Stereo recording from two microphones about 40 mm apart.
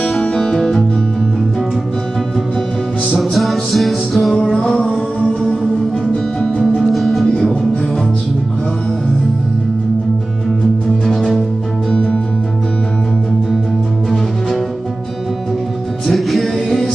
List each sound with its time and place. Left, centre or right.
0.4 s music: centre
3.2 s music: centre
4.6 s music: left
6.6 s music: centre
11.1 s music: centre
11.9 s music: left
16.1 s music: centre